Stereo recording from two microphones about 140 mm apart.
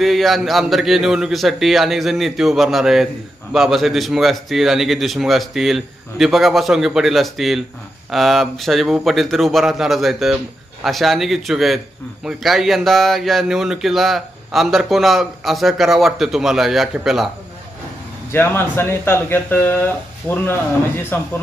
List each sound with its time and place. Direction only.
0.0 s speech: centre (ahead or behind)
18.3 s speech: 15° left (ahead or behind)